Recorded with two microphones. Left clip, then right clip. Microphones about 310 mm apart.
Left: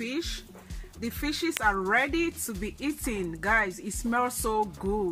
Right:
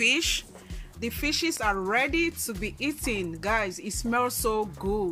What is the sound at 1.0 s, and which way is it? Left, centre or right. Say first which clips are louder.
Speech: right 3 dB; centre.